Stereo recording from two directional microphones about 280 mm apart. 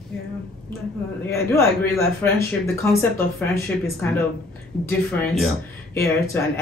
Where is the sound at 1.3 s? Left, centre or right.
Centre.